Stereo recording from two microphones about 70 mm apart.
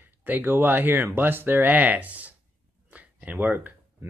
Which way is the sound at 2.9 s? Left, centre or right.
Right.